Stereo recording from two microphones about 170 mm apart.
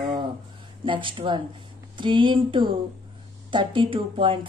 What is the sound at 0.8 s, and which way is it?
A woman's voice, 30° right (ahead or behind).